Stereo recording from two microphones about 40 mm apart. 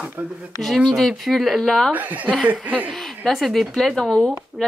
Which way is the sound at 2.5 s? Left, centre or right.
Right.